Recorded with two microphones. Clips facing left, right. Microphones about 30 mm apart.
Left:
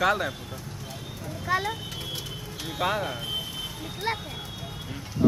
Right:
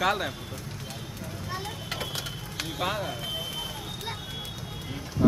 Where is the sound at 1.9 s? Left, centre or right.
Right.